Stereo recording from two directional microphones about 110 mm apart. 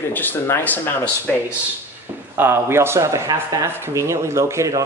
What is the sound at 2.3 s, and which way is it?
Speech, 20° right (ahead or behind).